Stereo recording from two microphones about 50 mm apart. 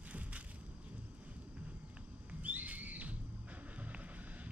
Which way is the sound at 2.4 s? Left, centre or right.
Right.